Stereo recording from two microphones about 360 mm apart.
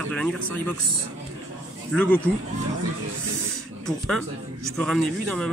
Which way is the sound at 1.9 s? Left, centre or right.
Centre.